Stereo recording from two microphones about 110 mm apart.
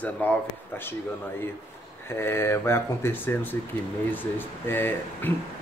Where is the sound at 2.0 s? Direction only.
20° left (ahead or behind).